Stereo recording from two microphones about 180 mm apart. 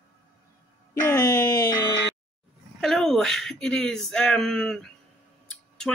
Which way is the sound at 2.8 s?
Centre (ahead or behind).